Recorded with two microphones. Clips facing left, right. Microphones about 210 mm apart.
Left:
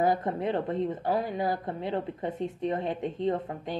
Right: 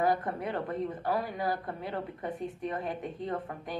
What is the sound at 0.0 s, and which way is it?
A woman's voice, 25° left (ahead or behind).